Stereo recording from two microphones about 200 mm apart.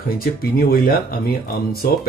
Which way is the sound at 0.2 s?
50° left (ahead or behind).